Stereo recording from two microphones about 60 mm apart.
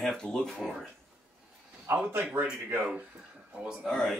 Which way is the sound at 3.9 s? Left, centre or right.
Centre.